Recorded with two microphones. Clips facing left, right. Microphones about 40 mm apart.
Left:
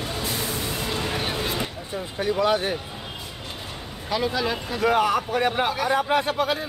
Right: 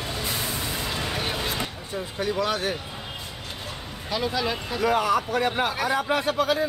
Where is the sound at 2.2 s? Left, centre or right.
Centre.